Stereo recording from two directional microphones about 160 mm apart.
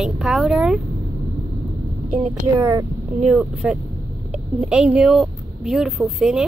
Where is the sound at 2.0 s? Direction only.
40° right (ahead or behind).